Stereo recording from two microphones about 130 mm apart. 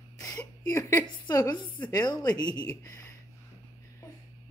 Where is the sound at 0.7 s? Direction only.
20° left (ahead or behind).